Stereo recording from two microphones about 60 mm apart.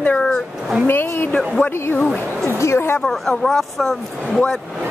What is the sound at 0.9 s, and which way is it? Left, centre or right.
Speech, left.